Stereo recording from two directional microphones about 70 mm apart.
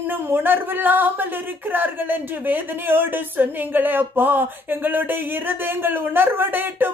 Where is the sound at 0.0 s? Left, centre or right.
Right.